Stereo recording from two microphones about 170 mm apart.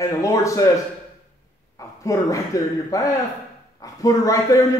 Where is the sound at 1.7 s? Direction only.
20° left (ahead or behind).